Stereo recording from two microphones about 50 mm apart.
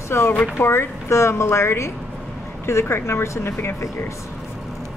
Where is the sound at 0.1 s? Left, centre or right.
Left.